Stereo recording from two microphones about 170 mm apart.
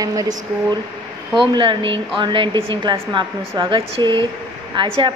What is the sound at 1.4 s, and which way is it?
A woman's voice, 30° right (ahead or behind).